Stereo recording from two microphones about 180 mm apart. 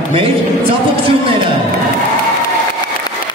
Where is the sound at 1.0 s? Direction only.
30° right (ahead or behind).